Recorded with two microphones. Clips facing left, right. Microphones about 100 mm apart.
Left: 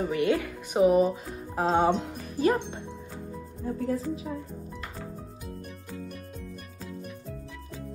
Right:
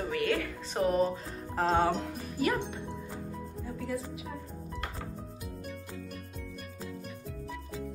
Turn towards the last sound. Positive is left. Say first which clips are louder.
# left 2 dB
turn(degrees=0)  # may be behind; listen again after turning